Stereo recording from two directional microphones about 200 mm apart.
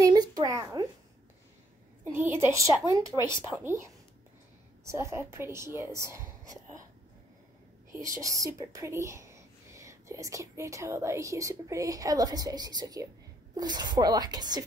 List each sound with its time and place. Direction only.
0.0 s a sound: 20° right (ahead or behind)
2.1 s speech: 10° right (ahead or behind)
5.1 s speech: 15° right (ahead or behind)
8.2 s speech: 15° right (ahead or behind)